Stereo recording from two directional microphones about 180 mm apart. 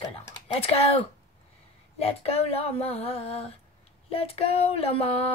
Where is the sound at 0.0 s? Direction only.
20° left (ahead or behind).